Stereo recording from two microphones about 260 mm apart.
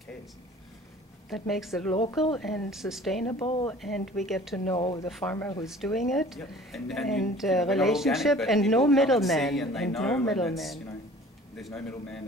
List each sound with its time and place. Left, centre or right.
1.3 s speech: centre
4.7 s speech: centre
5.0 s speech: centre
5.7 s speech: centre